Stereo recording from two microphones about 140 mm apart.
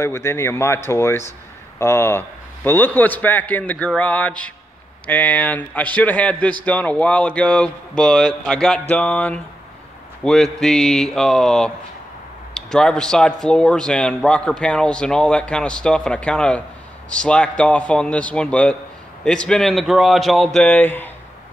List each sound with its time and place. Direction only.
0.0 s speech: 20° left (ahead or behind)